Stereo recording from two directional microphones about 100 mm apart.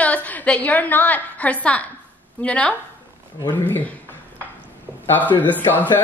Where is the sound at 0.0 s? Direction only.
15° left (ahead or behind).